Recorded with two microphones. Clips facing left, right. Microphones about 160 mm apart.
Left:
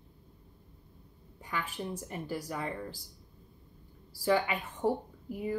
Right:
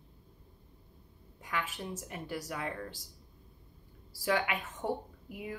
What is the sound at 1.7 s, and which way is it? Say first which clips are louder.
Speech: left 3 dB; centre (ahead or behind).